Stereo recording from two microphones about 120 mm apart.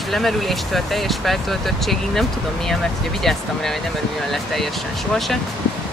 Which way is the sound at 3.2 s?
5° left (ahead or behind).